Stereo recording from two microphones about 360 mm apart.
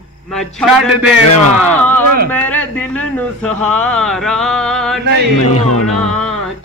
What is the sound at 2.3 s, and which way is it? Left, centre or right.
Speech, centre.